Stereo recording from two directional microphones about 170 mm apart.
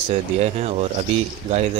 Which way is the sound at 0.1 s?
40° right (ahead or behind).